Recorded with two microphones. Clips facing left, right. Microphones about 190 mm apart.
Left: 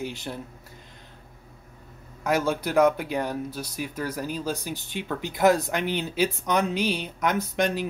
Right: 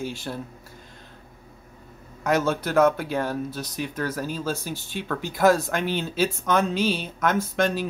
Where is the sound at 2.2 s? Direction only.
10° left (ahead or behind).